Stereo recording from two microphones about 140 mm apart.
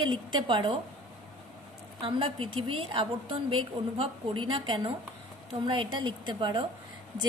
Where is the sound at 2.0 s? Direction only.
40° right (ahead or behind).